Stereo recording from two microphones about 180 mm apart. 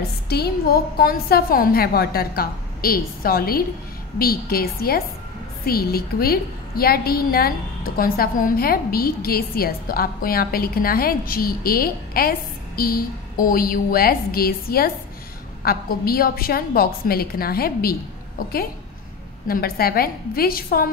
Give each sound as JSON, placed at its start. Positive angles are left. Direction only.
{"t": 0.3, "sound": "a woman's voice", "side_deg": 60}
{"t": 19.4, "sound": "a woman's voice", "side_deg": 55}